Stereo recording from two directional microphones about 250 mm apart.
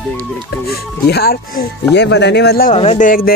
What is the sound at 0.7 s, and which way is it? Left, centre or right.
Speech, left.